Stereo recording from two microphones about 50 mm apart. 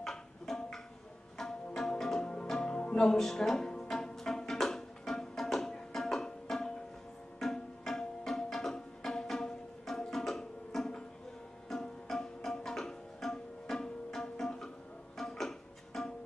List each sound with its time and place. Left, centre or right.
0.0 s music: centre
1.4 s tabla: centre
2.2 s music: centre
3.0 s music: centre